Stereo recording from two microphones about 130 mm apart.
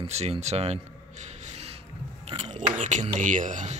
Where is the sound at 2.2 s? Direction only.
55° right (ahead or behind).